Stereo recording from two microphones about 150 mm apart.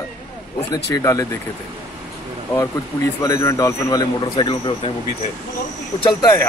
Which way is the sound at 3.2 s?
20° left (ahead or behind).